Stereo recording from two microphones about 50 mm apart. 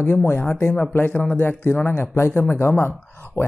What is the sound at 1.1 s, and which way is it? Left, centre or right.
Speech, left.